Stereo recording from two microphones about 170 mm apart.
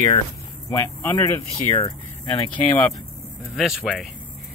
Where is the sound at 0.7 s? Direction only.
15° left (ahead or behind).